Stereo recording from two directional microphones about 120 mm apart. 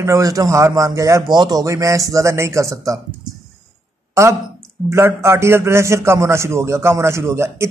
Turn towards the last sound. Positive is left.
turn(degrees=-20)  # may be behind; listen again after turning